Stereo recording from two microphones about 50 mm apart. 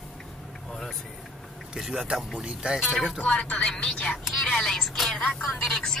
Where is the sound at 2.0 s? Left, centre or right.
Centre.